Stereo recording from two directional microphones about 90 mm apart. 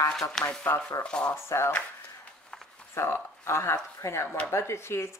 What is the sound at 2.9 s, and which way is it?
A woman's voice, 30° left (ahead or behind).